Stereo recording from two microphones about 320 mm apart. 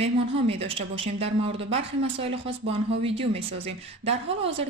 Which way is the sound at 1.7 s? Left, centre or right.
Centre.